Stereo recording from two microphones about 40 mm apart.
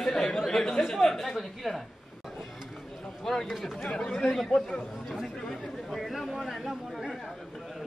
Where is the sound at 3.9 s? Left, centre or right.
Left.